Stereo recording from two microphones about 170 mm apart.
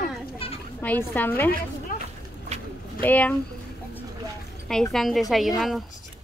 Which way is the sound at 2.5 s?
40° right (ahead or behind).